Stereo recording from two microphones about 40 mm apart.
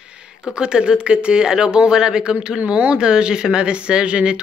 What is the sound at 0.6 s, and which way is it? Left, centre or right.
Speech, right.